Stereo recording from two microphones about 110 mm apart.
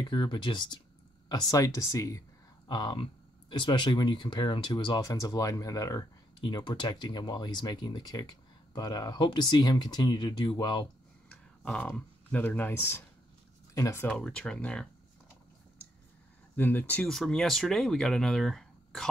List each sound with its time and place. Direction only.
0.1 s speech: 45° left (ahead or behind)
1.3 s speech: 30° left (ahead or behind)
2.7 s speech: 40° left (ahead or behind)
5.0 s speech: 30° left (ahead or behind)
6.4 s speech: 45° left (ahead or behind)
11.2 s speech: 10° left (ahead or behind); by 14.0 s 30° left (ahead or behind)
14.0 s speech: 10° left (ahead or behind)
16.5 s speech: 20° left (ahead or behind)
17.0 s speech: 5° left (ahead or behind)